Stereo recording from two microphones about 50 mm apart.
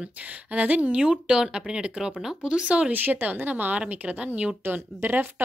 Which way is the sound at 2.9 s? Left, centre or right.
Right.